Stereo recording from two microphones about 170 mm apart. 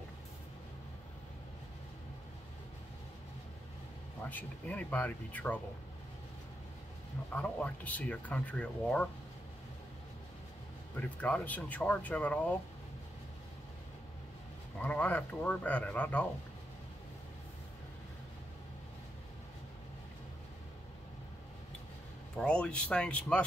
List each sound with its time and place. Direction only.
4.2 s speech: 10° left (ahead or behind)
7.3 s speech: 10° left (ahead or behind)
11.0 s speech: 5° left (ahead or behind)
14.8 s speech: 10° left (ahead or behind)
22.4 s speech: 5° left (ahead or behind)